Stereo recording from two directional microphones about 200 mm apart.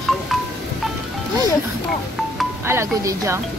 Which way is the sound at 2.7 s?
15° right (ahead or behind).